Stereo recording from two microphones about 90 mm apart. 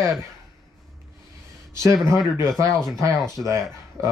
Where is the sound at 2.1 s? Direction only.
50° left (ahead or behind).